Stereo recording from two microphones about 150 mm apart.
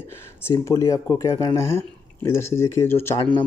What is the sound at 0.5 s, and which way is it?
Speech, 20° left (ahead or behind).